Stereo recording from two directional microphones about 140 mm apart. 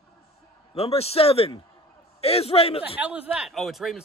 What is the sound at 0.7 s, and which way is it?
Speech, 45° left (ahead or behind).